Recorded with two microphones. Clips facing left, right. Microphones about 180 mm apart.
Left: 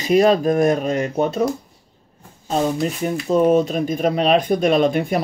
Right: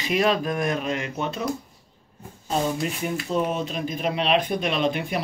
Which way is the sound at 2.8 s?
45° left (ahead or behind).